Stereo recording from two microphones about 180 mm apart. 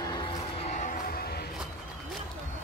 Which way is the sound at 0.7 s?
45° left (ahead or behind).